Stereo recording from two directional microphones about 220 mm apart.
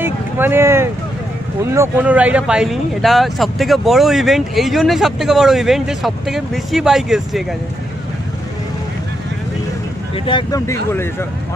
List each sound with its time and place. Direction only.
0.0 s vehicle: 10° right (ahead or behind)
1.6 s speech: 10° right (ahead or behind)
10.1 s speech: 20° left (ahead or behind)